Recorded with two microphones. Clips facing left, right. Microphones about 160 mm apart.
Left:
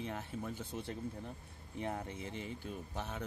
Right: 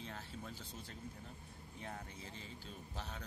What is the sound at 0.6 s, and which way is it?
Speech, 60° left (ahead or behind).